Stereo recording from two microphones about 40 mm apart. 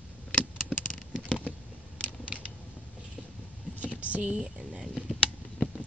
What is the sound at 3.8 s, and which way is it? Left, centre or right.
Whispering, right.